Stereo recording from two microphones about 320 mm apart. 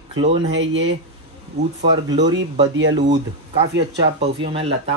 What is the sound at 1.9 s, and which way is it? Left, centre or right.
Speech, centre.